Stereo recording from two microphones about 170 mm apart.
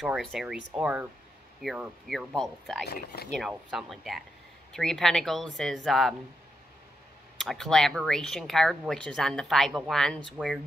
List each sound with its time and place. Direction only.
0.0 s speech: centre (ahead or behind)
2.9 s speech: 70° left (ahead or behind)
3.3 s speech: centre (ahead or behind)
7.3 s speech: centre (ahead or behind)